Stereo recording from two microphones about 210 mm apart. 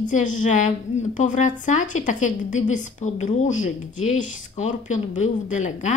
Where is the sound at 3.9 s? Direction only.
80° left.